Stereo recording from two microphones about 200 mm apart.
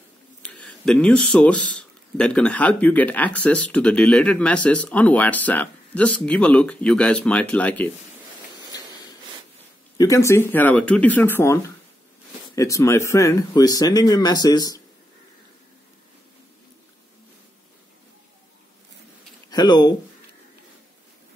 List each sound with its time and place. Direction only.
0.4 s speech: 5° left (ahead or behind)
8.7 s a sound: 20° left (ahead or behind)
9.9 s speech: 15° left (ahead or behind)
19.5 s speech: 20° left (ahead or behind)